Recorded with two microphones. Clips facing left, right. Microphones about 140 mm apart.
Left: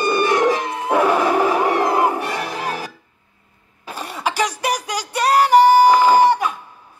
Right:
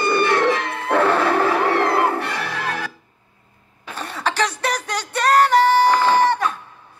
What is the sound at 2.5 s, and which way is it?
Music, 35° left (ahead or behind).